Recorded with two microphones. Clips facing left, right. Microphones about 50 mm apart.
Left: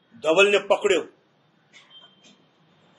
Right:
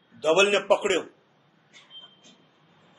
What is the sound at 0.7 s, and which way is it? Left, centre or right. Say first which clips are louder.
Speech: left 2 dB; left.